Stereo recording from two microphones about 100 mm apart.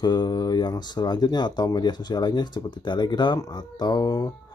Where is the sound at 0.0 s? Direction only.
45° left (ahead or behind).